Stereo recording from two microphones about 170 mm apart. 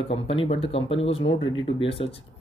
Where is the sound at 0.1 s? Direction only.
35° left (ahead or behind).